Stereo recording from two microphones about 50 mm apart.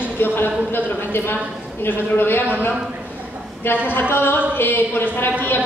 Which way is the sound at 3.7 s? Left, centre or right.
Left.